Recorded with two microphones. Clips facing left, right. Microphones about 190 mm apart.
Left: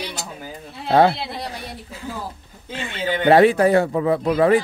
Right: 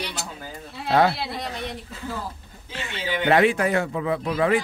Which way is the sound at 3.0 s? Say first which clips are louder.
Left 4 dB; 50° left (ahead or behind).